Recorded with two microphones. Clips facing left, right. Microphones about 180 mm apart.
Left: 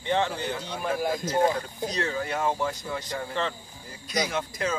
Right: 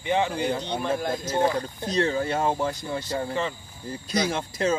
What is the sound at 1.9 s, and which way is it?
Speech, 30° right (ahead or behind).